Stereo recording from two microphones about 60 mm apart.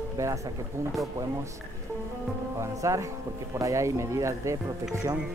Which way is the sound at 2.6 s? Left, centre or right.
Right.